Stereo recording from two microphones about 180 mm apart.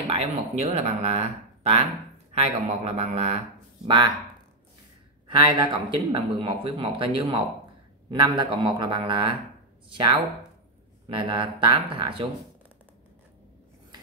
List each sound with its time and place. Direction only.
0.1 s speech: 35° right (ahead or behind)
3.8 s speech: 25° right (ahead or behind)
5.3 s speech: 25° right (ahead or behind)